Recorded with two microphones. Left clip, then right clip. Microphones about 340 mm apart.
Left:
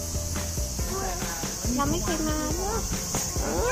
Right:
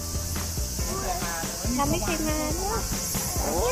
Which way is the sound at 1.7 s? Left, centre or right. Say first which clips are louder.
Right 1 dB; centre.